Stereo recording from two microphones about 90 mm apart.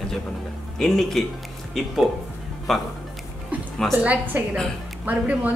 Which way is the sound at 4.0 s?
15° right (ahead or behind).